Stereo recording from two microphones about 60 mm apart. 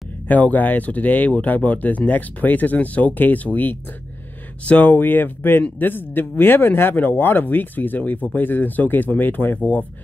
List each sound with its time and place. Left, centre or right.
0.3 s speech: left